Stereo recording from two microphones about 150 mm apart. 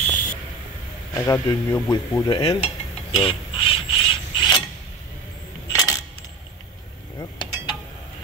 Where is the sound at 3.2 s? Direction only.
35° left (ahead or behind).